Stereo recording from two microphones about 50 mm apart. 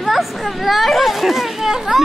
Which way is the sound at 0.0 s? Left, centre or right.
Centre.